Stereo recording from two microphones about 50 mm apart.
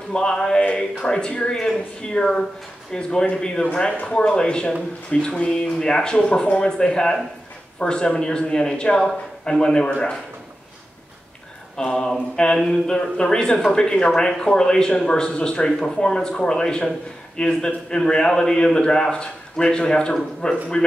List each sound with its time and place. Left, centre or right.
0.1 s speech: centre
11.7 s speech: centre